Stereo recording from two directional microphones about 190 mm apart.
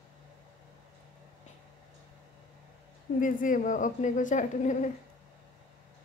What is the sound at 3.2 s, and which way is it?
A woman's voice, 45° left (ahead or behind).